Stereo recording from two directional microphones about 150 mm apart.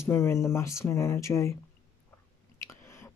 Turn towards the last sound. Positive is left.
turn(degrees=15)  # may be behind; listen again after turning